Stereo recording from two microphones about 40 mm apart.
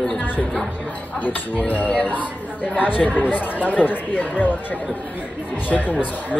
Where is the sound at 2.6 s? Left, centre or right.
Left.